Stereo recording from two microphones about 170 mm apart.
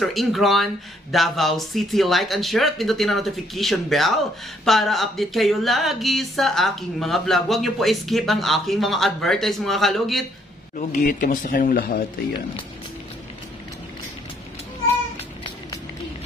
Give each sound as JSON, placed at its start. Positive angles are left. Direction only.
{"t": 0.0, "sound": "speech", "side_deg": 0}
{"t": 10.8, "sound": "speech", "side_deg": 55}